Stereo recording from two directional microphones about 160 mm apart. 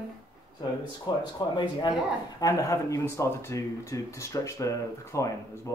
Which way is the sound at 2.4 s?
20° left (ahead or behind).